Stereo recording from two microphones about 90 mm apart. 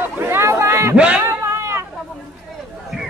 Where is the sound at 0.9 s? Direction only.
15° right (ahead or behind).